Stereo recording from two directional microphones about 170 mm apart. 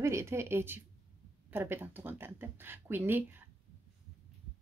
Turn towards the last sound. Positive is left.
turn(degrees=-10)  # may be behind; listen again after turning